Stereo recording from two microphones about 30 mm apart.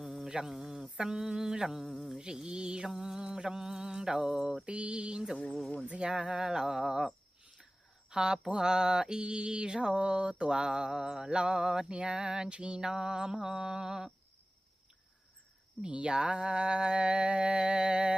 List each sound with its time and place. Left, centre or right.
0.0 s mantra: centre
1.9 s a sound: centre
2.1 s mantra: right
2.9 s mantra: centre
4.6 s mantra: right; by 7.1 s centre
8.1 s mantra: right
11.9 s mantra: right
12.4 s mantra: right
12.8 s mantra: right
15.8 s mantra: right